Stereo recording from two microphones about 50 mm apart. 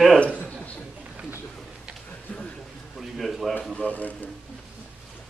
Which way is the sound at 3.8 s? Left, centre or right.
Left.